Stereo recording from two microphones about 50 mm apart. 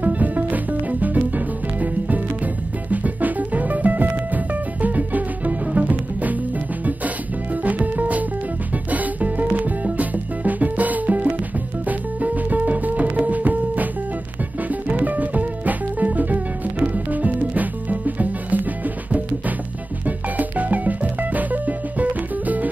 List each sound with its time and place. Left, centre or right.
0.0 s music: right
7.6 s music: right